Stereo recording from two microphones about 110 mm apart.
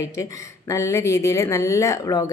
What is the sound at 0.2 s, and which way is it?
A woman's voice, 30° left (ahead or behind).